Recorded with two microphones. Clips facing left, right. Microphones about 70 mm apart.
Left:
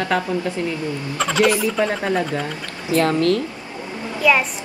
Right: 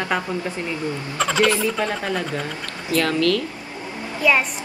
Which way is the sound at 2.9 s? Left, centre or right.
Left.